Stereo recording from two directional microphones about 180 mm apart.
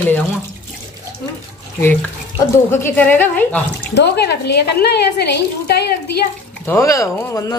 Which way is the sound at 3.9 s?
70° left (ahead or behind).